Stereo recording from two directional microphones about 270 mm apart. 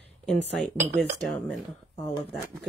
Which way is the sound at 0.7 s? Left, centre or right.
Right.